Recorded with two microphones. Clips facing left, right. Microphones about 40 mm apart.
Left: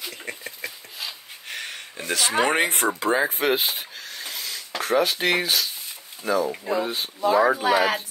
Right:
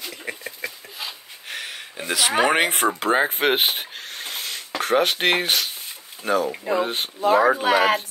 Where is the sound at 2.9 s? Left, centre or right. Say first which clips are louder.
Right 2 dB; right.